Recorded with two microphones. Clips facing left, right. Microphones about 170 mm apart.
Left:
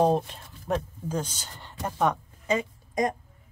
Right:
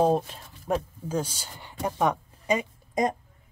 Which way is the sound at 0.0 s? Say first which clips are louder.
Even; 5° right (ahead or behind).